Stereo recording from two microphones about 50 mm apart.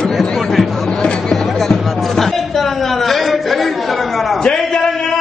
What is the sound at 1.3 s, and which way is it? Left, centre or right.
Music, centre.